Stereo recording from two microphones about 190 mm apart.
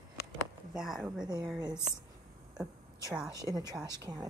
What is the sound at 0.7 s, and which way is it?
Speech, 5° right (ahead or behind).